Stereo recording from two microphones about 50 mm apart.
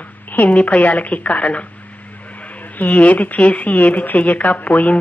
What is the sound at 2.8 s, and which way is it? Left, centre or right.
Speech, left.